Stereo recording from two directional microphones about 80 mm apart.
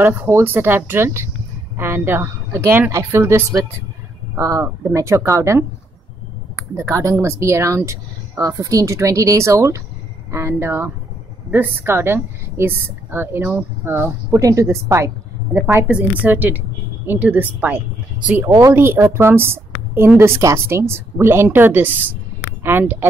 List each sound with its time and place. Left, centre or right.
0.0 s a woman's voice: right
14.4 s speech: right
15.9 s speech: right
18.6 s a woman's voice: right